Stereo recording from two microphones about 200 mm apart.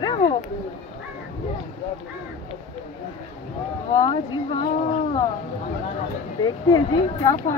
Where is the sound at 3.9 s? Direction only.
25° left (ahead or behind).